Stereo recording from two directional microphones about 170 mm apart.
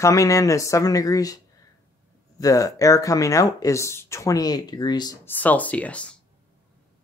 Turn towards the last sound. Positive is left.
turn(degrees=10)  # may be behind; listen again after turning